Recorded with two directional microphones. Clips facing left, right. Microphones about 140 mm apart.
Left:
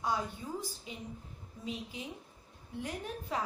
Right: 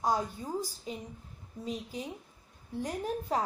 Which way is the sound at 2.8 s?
40° right (ahead or behind).